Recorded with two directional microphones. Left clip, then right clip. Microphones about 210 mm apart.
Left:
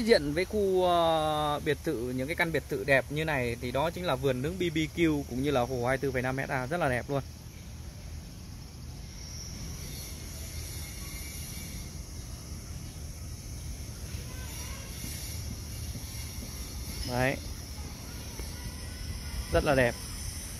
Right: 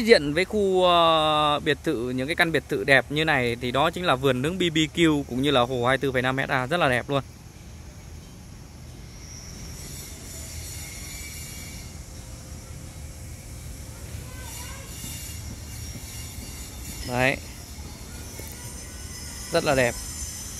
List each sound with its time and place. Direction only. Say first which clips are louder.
0.0 s speech: right 7 dB; 15° right (ahead or behind)
17.1 s speech: right 7 dB; 15° right (ahead or behind)
19.5 s speech: right 4 dB; 5° right (ahead or behind)